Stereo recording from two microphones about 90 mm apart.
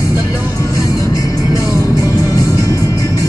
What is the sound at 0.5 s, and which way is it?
Music, 40° left (ahead or behind).